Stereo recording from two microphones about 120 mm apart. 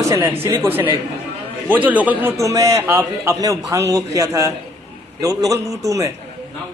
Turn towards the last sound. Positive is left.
turn(degrees=-25)  # may be behind; listen again after turning